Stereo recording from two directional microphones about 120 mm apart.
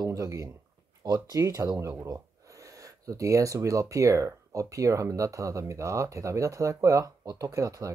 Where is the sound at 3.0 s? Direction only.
25° right (ahead or behind).